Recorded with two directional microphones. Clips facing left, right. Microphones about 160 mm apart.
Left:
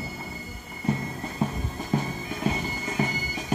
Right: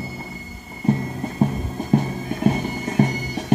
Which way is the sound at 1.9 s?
50° right (ahead or behind).